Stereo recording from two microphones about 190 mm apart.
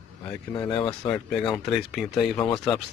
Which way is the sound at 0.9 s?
5° left (ahead or behind).